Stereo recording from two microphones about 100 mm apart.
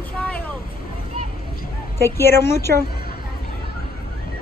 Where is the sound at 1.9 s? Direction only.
25° left (ahead or behind).